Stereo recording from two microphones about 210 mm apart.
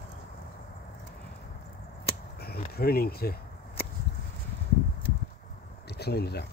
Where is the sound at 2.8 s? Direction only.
45° left (ahead or behind).